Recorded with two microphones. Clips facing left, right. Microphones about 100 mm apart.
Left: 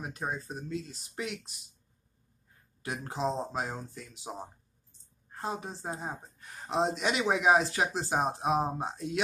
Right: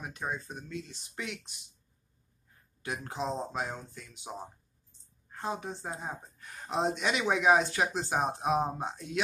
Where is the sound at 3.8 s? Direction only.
35° left (ahead or behind).